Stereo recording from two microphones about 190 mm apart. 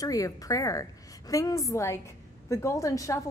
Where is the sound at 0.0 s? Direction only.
20° left (ahead or behind).